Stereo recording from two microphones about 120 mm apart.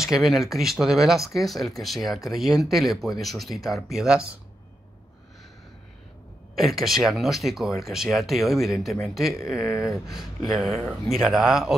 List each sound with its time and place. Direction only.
0.0 s speech: centre (ahead or behind)
6.5 s speech: centre (ahead or behind)